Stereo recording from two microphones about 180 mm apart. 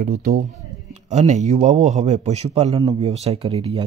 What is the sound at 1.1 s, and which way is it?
A man's voice, 40° right (ahead or behind).